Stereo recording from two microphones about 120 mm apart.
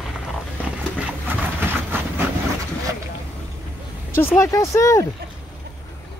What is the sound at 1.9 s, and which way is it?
Vehicle, 20° right (ahead or behind).